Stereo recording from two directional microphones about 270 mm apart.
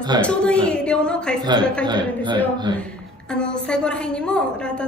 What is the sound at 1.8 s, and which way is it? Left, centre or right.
Speech, centre.